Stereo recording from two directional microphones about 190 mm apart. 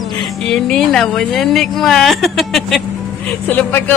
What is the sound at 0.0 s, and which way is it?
A man's voice, centre (ahead or behind).